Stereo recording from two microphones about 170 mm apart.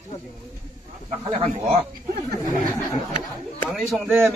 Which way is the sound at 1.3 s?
40° right (ahead or behind).